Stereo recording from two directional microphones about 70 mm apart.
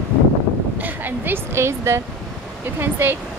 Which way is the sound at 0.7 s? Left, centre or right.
Right.